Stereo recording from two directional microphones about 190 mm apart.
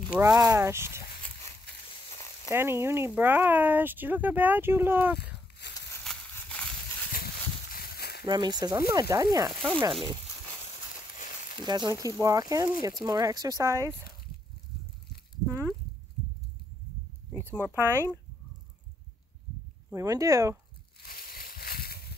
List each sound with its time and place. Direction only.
0.1 s speech: 15° right (ahead or behind)
2.1 s sizzle: 15° left (ahead or behind)
2.5 s speech: 15° right (ahead or behind)
6.3 s a sound: 5° left (ahead or behind)
7.7 s a sound: 55° left (ahead or behind)
8.3 s speech: 25° right (ahead or behind)
9.5 s speech: 5° right (ahead or behind)
11.1 s a sound: 45° left (ahead or behind)
11.6 s speech: 20° right (ahead or behind)
17.3 s speech: 10° right (ahead or behind)
19.9 s speech: 15° right (ahead or behind)
21.0 s a sound: 50° left (ahead or behind)